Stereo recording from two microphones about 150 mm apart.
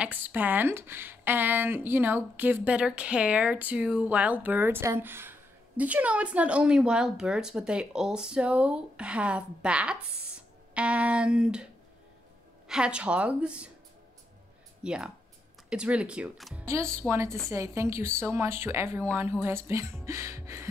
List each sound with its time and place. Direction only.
0.0 s speech: 10° right (ahead or behind)
14.8 s speech: 5° right (ahead or behind)
16.6 s speech: 20° right (ahead or behind)